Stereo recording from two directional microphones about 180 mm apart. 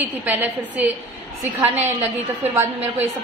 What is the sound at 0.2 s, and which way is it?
Speech, 10° right (ahead or behind).